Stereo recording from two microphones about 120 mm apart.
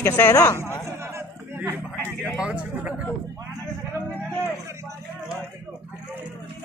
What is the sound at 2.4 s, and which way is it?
Speech, 10° right (ahead or behind).